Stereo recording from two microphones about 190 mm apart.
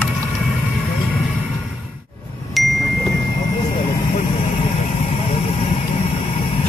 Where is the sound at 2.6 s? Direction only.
Centre (ahead or behind).